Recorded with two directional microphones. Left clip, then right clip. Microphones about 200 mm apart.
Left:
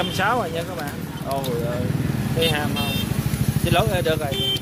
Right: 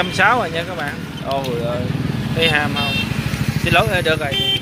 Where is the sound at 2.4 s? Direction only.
5° right (ahead or behind).